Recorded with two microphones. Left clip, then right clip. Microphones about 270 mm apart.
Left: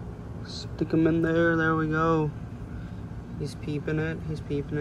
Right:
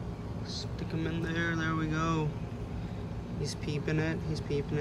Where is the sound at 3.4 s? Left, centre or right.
Centre.